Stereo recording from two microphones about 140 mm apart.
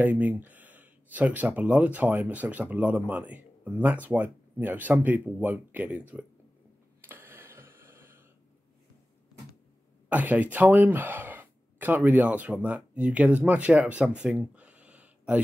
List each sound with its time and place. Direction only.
0.0 s speech: 10° right (ahead or behind)
7.0 s a sound: 15° right (ahead or behind)
10.0 s speech: 10° right (ahead or behind)